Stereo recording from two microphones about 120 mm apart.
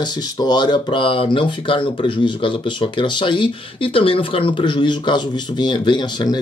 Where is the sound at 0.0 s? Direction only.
35° left (ahead or behind).